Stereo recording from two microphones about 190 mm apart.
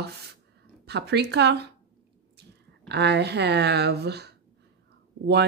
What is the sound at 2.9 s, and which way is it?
A woman's voice, 60° right (ahead or behind).